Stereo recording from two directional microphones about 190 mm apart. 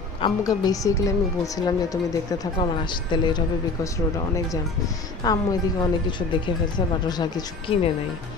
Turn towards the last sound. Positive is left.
turn(degrees=25)  # may be behind; listen again after turning